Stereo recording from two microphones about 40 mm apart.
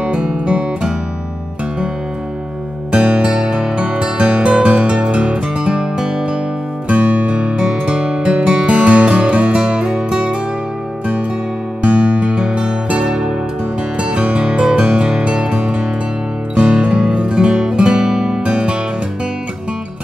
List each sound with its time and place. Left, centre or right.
0.5 s music: right
2.9 s music: right
6.9 s music: right
11.8 s music: right